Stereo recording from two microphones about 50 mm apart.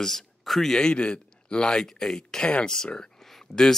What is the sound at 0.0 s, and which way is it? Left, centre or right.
Speech, centre.